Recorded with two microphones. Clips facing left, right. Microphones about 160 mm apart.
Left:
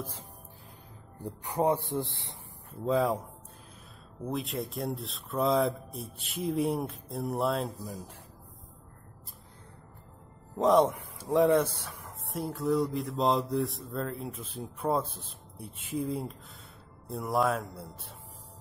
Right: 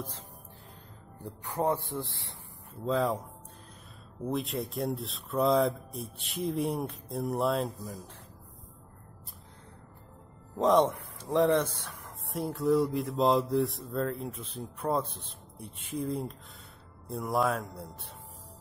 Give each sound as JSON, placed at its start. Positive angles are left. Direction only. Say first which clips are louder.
{"t": 1.2, "sound": "speech", "louder": "left 2 dB", "side_deg": 15}
{"t": 2.9, "sound": "speech", "louder": "left 2 dB", "side_deg": 10}
{"t": 4.3, "sound": "speech", "louder": "right 1 dB", "side_deg": 0}
{"t": 10.6, "sound": "speech", "louder": "left 1 dB", "side_deg": 0}